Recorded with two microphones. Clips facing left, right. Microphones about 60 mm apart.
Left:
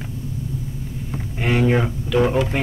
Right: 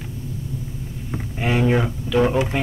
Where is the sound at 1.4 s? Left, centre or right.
Centre.